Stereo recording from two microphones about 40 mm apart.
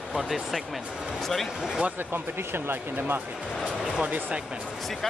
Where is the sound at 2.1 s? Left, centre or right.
Right.